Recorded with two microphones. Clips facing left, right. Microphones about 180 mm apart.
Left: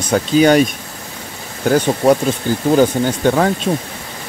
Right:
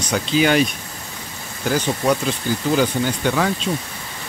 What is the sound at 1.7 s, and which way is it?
Speech, 50° left (ahead or behind).